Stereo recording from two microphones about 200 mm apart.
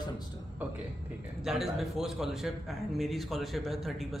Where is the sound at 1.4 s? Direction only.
Centre (ahead or behind).